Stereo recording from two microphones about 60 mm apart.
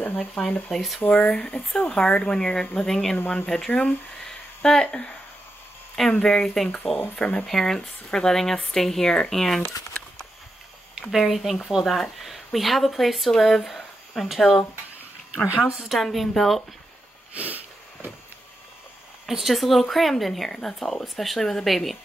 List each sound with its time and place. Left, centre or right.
0.7 s speech: centre
1.0 s speech: left
1.7 s speech: centre
7.2 s speech: centre
7.4 s speech: centre
11.0 s speech: centre
15.4 s a woman's voice: right
15.9 s speech: centre
17.3 s a sound: right
19.2 s speech: centre